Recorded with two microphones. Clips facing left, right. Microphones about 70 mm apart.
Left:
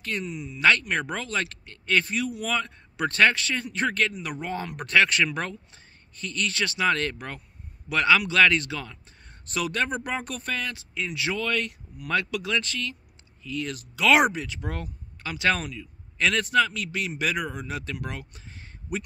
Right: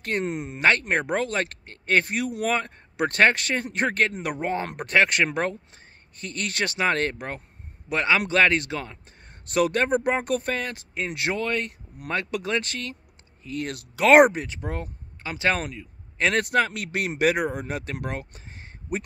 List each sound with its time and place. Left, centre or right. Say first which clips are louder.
0.2 s speech: right 6 dB; right
0.6 s speech: even; right